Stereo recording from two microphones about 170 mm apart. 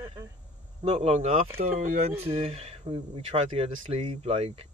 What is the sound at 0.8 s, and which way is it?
Speech, 35° right (ahead or behind).